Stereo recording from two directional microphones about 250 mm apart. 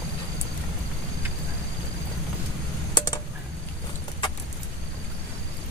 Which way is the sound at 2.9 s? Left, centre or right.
Centre.